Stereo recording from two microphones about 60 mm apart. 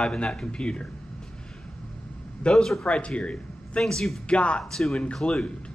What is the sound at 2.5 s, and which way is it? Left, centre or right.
Speech, centre.